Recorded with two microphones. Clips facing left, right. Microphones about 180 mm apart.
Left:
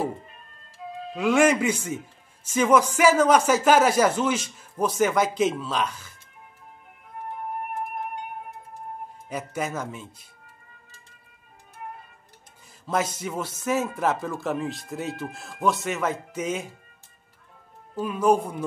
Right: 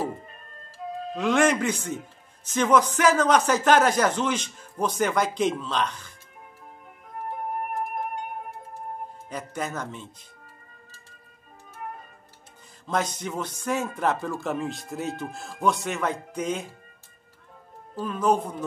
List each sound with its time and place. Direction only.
0.3 s music: 40° right (ahead or behind)
1.1 s speech: 10° left (ahead or behind)
7.2 s music: 45° right (ahead or behind)
9.3 s speech: 5° left (ahead or behind)
12.8 s speech: 5° left (ahead or behind)
17.9 s speech: 10° left (ahead or behind)